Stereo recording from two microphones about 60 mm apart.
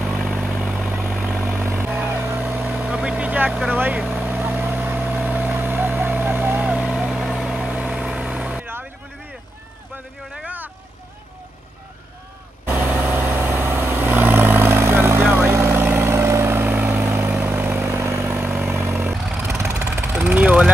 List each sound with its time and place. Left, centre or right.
0.2 s vehicle: centre
1.6 s vehicle: right
1.9 s vehicle: right
2.9 s vehicle: right
7.1 s vehicle: centre
7.7 s vehicle: centre
10.3 s vehicle: right
12.6 s vehicle: right
15.8 s vehicle: right
16.1 s vehicle: right
16.5 s vehicle: right
18.3 s vehicle: right
19.7 s vehicle: right
20.2 s vehicle: right